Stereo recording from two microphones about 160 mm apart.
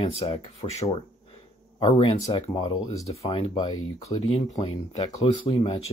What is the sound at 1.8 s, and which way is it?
Speech, 30° left (ahead or behind).